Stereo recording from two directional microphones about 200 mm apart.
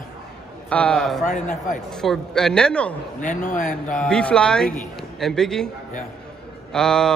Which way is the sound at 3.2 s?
40° left (ahead or behind).